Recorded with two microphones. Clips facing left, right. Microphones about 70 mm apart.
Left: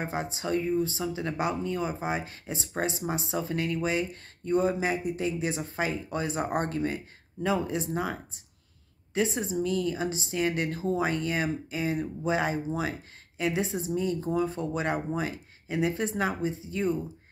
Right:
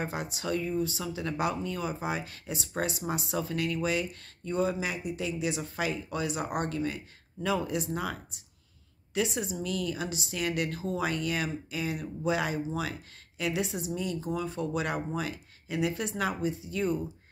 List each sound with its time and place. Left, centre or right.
0.0 s speech: left